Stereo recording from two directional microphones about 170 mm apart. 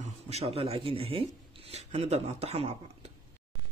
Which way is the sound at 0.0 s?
40° right (ahead or behind).